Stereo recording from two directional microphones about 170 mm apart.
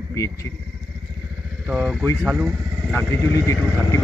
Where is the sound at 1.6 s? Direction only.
5° right (ahead or behind).